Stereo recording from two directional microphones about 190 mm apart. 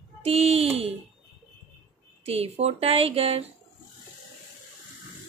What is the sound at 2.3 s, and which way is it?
Speech, 35° right (ahead or behind).